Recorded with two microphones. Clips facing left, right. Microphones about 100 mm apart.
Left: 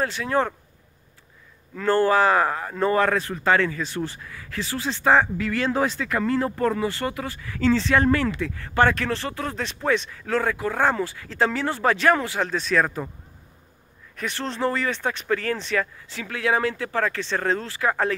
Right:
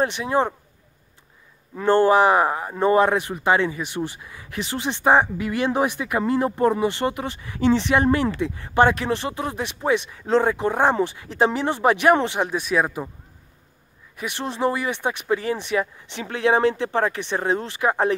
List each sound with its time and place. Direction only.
0.0 s speech: 20° right (ahead or behind)
1.8 s speech: 20° right (ahead or behind)
14.1 s speech: 15° right (ahead or behind)